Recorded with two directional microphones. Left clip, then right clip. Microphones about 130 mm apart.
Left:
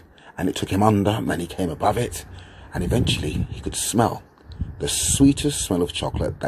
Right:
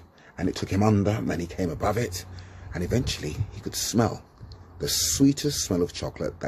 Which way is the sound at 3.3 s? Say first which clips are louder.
Left 7 dB; 65° right (ahead or behind).